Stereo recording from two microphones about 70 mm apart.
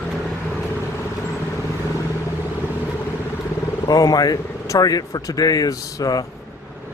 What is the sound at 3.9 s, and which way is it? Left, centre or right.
Speech, left.